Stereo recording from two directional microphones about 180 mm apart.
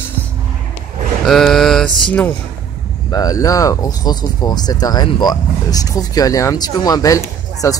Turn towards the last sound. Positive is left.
turn(degrees=20)  # may be behind; listen again after turning